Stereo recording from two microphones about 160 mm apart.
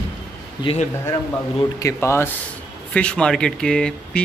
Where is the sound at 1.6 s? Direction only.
20° left (ahead or behind).